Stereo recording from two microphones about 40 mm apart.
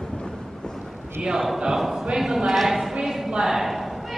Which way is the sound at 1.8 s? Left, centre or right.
Centre.